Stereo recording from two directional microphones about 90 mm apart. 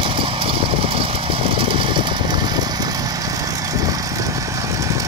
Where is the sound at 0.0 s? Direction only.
75° right (ahead or behind); by 5.0 s 35° right (ahead or behind).